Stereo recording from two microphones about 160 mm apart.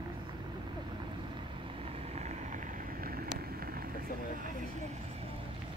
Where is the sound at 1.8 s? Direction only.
40° right (ahead or behind); by 4.4 s 65° right (ahead or behind).